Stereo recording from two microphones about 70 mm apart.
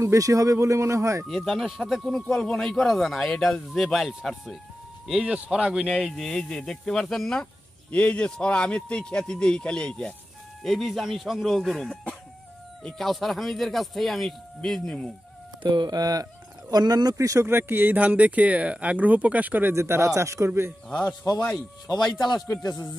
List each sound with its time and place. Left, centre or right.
0.0 s speech: right
1.3 s speech: centre
5.2 s speech: centre
6.1 s speech: centre
10.6 s speech: centre
15.7 s speech: right
16.7 s speech: right
17.1 s speech: right
17.5 s speech: right
19.7 s speech: right
22.0 s a man's voice: left
22.6 s speech: left